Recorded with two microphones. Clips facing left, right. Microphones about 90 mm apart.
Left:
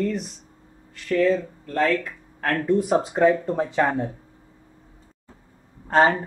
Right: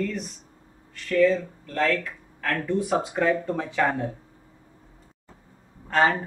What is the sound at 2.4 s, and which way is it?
Speech, 50° left (ahead or behind).